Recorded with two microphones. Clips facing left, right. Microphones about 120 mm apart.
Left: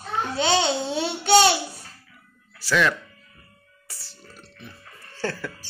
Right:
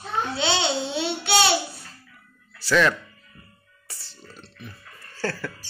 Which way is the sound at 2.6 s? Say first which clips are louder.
Right 2 dB; 5° left (ahead or behind).